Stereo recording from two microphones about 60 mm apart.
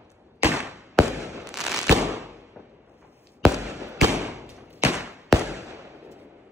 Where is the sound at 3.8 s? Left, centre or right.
Right.